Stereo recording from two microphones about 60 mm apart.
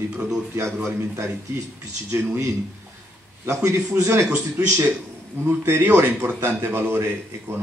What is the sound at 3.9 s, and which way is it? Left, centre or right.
Speech, right.